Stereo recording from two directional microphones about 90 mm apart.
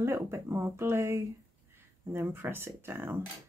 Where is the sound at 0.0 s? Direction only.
30° right (ahead or behind).